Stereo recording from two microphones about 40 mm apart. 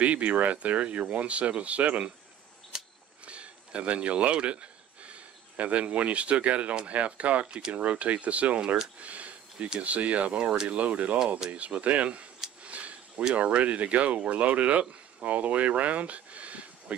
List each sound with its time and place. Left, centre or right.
0.0 s speech: right
3.3 s speech: right
9.0 s a sound: right
9.8 s speech: right
12.6 s a sound: right
13.3 s speech: right